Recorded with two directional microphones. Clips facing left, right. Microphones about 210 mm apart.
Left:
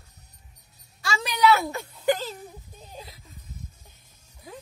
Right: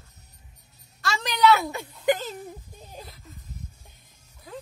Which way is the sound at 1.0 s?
10° left (ahead or behind).